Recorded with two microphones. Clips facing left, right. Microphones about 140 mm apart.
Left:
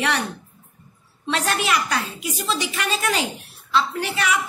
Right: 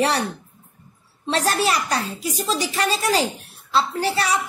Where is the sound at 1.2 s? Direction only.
35° right (ahead or behind).